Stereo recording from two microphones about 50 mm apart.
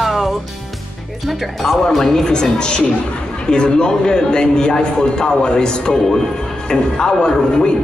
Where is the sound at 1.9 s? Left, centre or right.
Centre.